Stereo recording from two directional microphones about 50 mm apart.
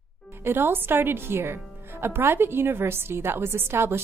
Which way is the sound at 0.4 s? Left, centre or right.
Right.